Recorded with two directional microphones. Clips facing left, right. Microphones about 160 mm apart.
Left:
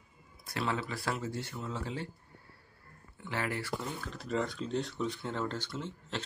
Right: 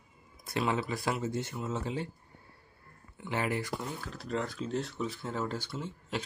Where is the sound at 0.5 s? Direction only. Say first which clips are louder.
Right 4 dB; 15° right (ahead or behind).